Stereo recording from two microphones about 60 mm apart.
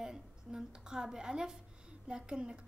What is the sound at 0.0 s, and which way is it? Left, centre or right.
A woman's voice, centre.